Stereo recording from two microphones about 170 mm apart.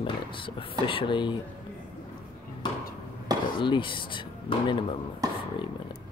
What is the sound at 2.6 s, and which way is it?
Chop, 25° left (ahead or behind).